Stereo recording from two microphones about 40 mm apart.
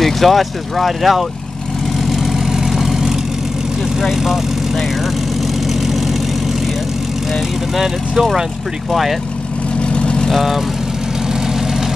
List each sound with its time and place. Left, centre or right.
0.0 s speech: centre
2.0 s vehicle: centre
4.0 s speech: centre
5.7 s vehicle: centre
7.7 s speech: centre
9.8 s vehicle: left
10.3 s speech: centre